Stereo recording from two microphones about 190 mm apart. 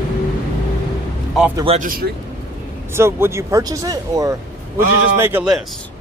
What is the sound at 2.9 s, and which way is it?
Speech, 15° right (ahead or behind).